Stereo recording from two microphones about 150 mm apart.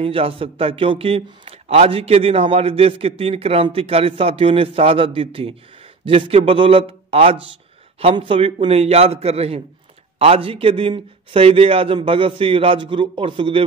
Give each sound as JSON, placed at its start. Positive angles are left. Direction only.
{"t": 0.0, "sound": "a man's voice", "side_deg": -40}